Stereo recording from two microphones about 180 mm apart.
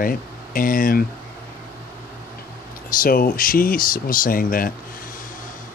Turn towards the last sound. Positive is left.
turn(degrees=50)  # may be behind; listen again after turning